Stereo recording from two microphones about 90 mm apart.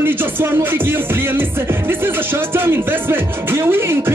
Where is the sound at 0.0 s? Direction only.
25° right (ahead or behind).